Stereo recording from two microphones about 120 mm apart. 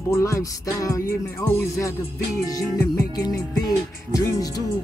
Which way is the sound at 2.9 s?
30° left (ahead or behind).